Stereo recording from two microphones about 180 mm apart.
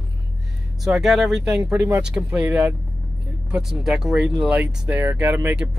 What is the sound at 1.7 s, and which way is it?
Speech, 15° right (ahead or behind).